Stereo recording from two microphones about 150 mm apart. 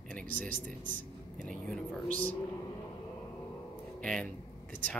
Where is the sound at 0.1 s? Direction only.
10° left (ahead or behind).